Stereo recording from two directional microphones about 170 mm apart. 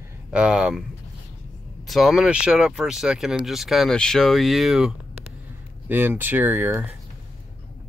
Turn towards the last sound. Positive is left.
turn(degrees=-10)  # may be behind; listen again after turning